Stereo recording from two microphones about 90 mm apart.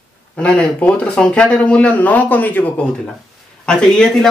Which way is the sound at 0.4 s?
15° left (ahead or behind).